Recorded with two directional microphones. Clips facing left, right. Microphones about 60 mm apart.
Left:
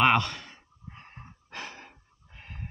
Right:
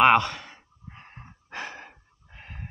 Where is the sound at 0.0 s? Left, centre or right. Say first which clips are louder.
Right 4 dB; centre.